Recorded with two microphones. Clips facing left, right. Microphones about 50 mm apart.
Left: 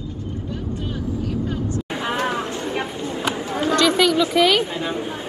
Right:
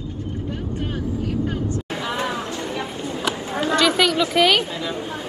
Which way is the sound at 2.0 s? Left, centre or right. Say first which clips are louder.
Left 3 dB; left.